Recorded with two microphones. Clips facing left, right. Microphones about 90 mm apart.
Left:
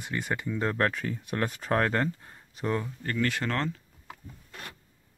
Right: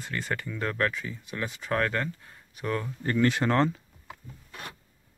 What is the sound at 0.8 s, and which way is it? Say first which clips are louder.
Speech: left 1 dB; 50° left (ahead or behind).